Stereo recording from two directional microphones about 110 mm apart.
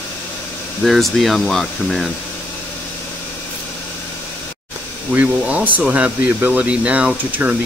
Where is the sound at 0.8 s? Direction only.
Centre (ahead or behind).